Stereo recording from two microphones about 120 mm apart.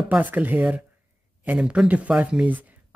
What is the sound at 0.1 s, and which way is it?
Speech, 15° right (ahead or behind).